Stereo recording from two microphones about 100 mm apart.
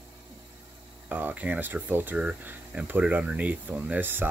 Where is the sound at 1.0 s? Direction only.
15° right (ahead or behind).